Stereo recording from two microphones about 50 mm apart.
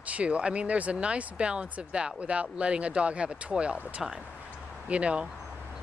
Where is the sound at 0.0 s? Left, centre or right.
Right.